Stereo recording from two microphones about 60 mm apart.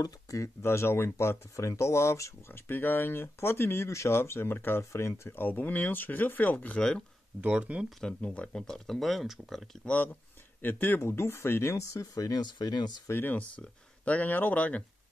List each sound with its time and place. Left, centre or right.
0.0 s speech: left
0.6 s speech: left
5.3 s speech: left
7.4 s speech: right
8.0 s speech: centre
9.8 s speech: left
11.1 s speech: left
13.1 s speech: left
13.4 s speech: left